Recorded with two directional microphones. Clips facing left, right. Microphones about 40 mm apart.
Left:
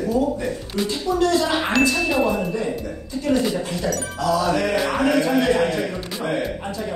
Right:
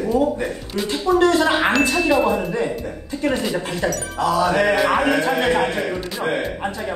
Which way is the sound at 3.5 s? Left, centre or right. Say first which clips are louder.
Right 2 dB; right.